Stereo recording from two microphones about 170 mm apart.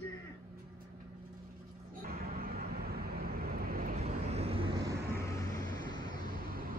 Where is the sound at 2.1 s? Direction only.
60° right (ahead or behind).